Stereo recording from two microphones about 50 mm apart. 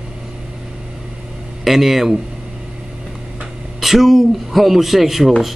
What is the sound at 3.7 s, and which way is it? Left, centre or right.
Speech, centre.